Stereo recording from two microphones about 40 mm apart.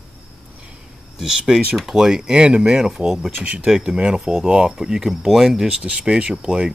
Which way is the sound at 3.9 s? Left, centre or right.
Right.